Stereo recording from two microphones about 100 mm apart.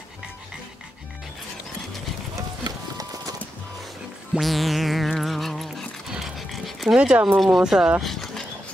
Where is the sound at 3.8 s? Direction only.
Centre (ahead or behind).